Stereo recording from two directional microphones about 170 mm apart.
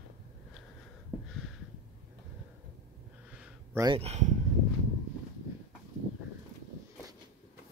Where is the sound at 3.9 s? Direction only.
40° right (ahead or behind).